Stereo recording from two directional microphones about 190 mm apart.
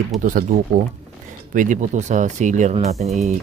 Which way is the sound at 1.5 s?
45° right (ahead or behind).